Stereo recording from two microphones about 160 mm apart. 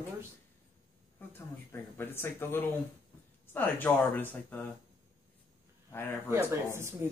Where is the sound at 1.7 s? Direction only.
15° left (ahead or behind).